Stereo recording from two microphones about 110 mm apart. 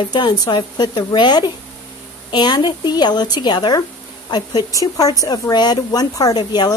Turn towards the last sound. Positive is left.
turn(degrees=40)  # may be behind; listen again after turning